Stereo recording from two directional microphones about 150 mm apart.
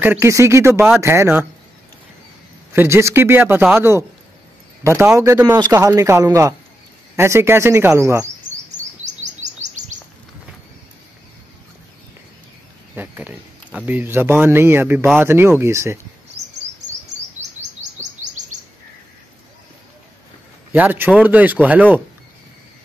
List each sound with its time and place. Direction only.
0.0 s a man's voice: 15° right (ahead or behind)
2.7 s a man's voice: 15° right (ahead or behind)
5.1 s a man's voice: 20° right (ahead or behind)
9.0 s chirp: 50° right (ahead or behind)
12.9 s a man's voice: 10° right (ahead or behind)
18.2 s chirp: 55° right (ahead or behind)
20.7 s a man's voice: 10° right (ahead or behind)